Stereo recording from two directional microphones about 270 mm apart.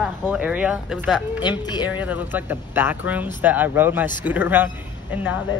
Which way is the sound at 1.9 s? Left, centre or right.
Centre.